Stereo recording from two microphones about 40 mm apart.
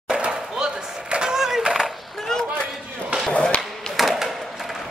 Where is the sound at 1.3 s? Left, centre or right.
Centre.